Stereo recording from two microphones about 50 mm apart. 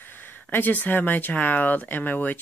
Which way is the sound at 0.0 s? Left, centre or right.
Left.